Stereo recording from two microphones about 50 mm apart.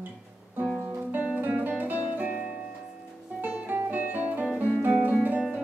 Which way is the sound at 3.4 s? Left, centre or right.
Right.